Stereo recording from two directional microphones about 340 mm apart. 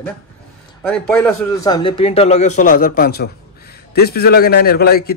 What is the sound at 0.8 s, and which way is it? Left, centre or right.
A man's voice, centre.